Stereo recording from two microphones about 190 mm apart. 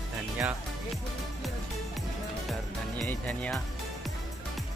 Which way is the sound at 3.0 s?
5° left (ahead or behind).